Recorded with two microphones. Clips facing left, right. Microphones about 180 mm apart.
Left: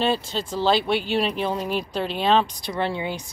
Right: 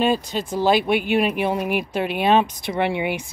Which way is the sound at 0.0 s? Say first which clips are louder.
Right 3 dB; 15° right (ahead or behind).